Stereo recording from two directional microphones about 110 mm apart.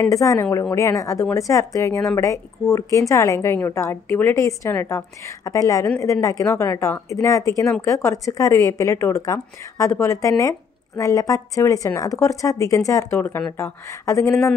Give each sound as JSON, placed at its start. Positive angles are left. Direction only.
{"t": 0.1, "sound": "speech", "side_deg": 30}